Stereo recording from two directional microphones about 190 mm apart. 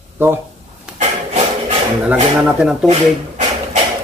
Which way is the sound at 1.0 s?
35° right (ahead or behind).